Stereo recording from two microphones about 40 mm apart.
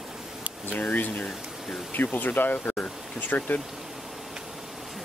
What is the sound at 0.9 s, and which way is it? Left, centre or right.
Speech, left.